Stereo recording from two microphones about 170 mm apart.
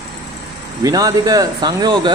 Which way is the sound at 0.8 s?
20° right (ahead or behind).